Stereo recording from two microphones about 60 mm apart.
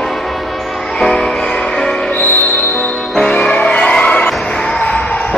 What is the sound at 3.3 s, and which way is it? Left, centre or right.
Music, centre.